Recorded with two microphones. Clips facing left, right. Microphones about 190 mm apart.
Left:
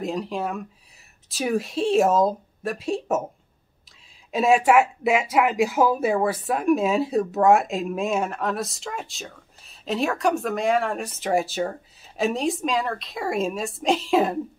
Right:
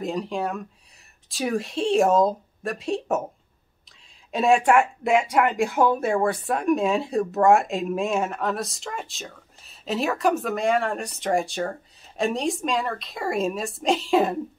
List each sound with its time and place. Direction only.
0.0 s speech: centre (ahead or behind)
4.3 s speech: 5° left (ahead or behind)